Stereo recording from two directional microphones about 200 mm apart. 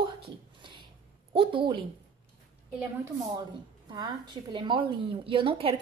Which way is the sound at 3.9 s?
20° right (ahead or behind).